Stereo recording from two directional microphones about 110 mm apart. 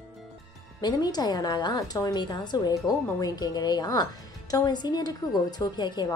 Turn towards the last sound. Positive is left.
turn(degrees=40)  # may be behind; listen again after turning